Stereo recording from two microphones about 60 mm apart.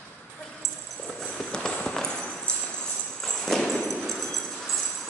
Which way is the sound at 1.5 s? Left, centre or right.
Centre.